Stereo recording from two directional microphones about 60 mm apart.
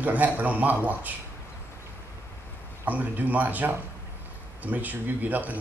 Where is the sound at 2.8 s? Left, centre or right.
Right.